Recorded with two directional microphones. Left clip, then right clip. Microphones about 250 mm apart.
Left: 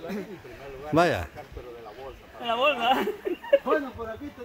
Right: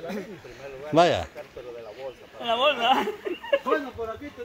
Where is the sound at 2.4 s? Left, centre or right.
Centre.